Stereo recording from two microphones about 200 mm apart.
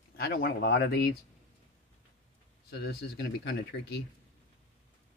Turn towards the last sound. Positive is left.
turn(degrees=60)  # may be behind; listen again after turning